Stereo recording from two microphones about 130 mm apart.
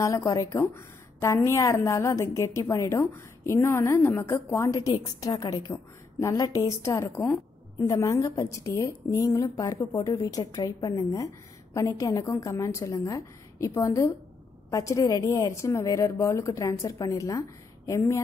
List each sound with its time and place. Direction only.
0.0 s a woman's voice: 25° left (ahead or behind)